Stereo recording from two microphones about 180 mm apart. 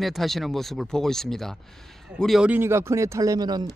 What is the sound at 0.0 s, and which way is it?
Speech, centre (ahead or behind).